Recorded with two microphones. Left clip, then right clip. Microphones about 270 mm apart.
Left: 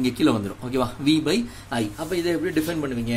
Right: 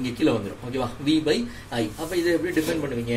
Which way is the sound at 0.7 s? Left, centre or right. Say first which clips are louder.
Left 2 dB; left.